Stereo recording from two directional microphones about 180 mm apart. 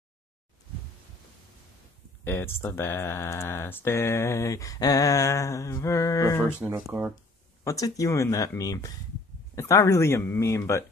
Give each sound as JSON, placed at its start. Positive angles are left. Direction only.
{"t": 2.2, "sound": "speech", "side_deg": 10}
{"t": 6.6, "sound": "speech", "side_deg": -10}
{"t": 7.6, "sound": "speech", "side_deg": 20}